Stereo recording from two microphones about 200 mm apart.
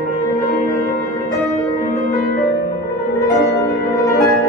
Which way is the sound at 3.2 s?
15° left (ahead or behind).